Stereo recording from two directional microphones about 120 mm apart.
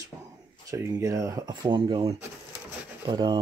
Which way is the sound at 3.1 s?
40° right (ahead or behind).